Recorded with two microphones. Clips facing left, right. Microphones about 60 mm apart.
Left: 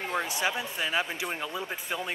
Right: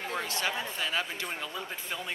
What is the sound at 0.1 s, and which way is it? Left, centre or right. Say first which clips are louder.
Speech: left 3 dB; centre.